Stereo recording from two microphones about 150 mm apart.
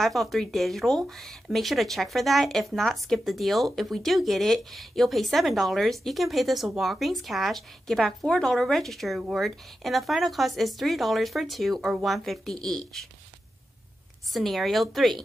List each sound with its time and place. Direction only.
0.0 s speech: centre (ahead or behind)
14.3 s speech: centre (ahead or behind)